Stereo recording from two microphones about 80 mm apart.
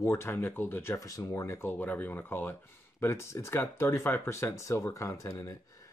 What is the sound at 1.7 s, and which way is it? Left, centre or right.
Speech, left.